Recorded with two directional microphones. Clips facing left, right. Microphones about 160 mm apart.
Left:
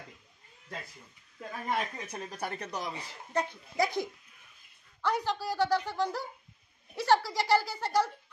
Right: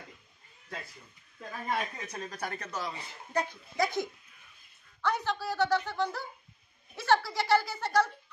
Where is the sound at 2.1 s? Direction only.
15° left (ahead or behind).